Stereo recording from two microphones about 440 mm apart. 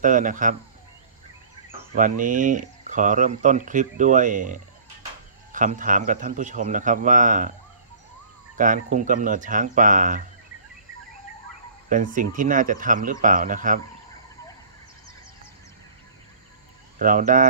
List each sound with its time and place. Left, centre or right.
0.0 s speech: centre
2.0 s speech: centre
8.5 s speech: centre
11.9 s speech: centre
17.0 s speech: centre